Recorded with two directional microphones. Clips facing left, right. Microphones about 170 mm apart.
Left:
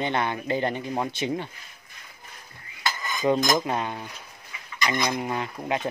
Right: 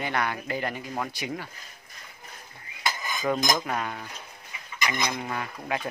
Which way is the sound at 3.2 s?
20° left (ahead or behind).